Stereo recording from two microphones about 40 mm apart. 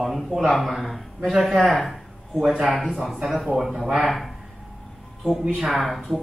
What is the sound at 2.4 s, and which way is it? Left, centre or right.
A man's voice, centre.